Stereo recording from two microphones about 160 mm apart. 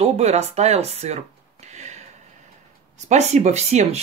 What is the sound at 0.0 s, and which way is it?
Speech, 40° right (ahead or behind).